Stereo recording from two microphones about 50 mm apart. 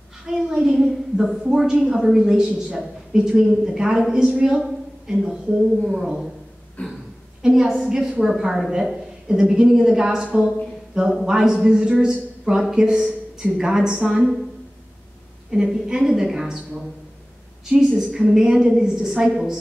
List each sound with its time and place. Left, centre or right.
0.3 s a woman's voice: centre
6.8 s speech: left
7.4 s a woman's voice: centre
15.5 s a woman's voice: centre
17.9 s a woman's voice: centre